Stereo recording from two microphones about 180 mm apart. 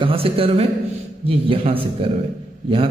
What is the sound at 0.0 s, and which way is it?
A man's voice, 30° right (ahead or behind).